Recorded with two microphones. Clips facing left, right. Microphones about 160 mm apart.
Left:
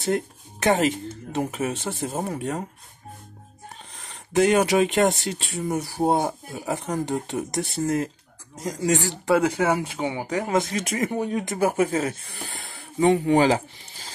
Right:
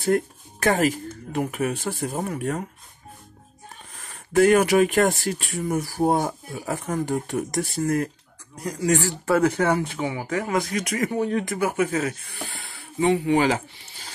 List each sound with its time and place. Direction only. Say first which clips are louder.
0.0 s speech: right 3 dB; 20° left (ahead or behind)
4.4 s speech: right 2 dB; 20° left (ahead or behind)
9.9 s speech: even; 25° left (ahead or behind)
11.2 s speech: right 2 dB; 15° left (ahead or behind)
11.5 s speech: left 1 dB; 35° left (ahead or behind)
12.4 s a sound: left 1 dB; 40° left (ahead or behind)